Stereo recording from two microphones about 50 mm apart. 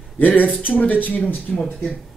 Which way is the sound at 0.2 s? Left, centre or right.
Left.